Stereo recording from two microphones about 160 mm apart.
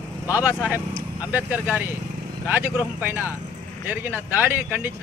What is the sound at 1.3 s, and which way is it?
Speech, 10° right (ahead or behind).